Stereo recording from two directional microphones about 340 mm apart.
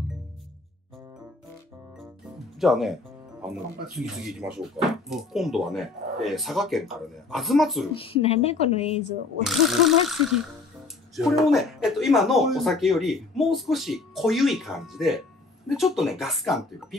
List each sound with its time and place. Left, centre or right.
2.6 s speech: centre
8.0 s a woman's voice: centre
9.4 s speech: centre